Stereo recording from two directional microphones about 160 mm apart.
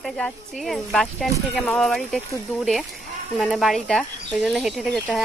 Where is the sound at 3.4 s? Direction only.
Centre (ahead or behind).